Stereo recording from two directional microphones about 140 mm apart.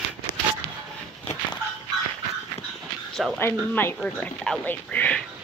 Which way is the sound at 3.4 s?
15° left (ahead or behind).